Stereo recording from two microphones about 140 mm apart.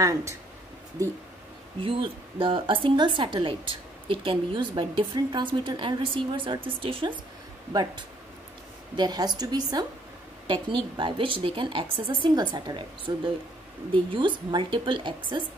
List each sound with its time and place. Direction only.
0.0 s a woman's voice: 20° right (ahead or behind)
1.8 s a woman's voice: 40° right (ahead or behind)